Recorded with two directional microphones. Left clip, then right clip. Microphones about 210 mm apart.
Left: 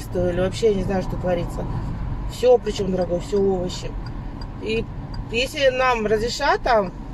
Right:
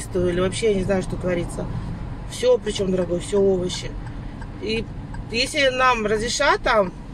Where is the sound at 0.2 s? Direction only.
20° right (ahead or behind).